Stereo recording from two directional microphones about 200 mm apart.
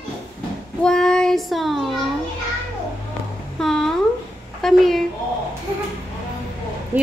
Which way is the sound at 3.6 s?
Centre (ahead or behind).